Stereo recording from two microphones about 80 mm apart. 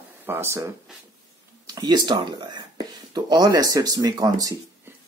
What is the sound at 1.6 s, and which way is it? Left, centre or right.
Speech, right.